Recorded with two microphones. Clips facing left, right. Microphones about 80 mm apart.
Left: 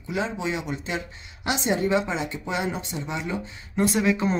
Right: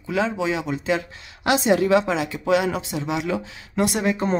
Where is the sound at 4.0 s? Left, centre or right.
Right.